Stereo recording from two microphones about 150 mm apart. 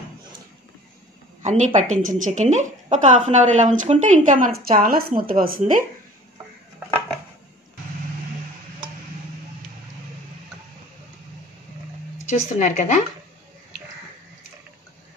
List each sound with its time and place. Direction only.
1.4 s a woman's voice: 50° right (ahead or behind); by 5.9 s 70° right (ahead or behind)
12.3 s a woman's voice: 55° left (ahead or behind)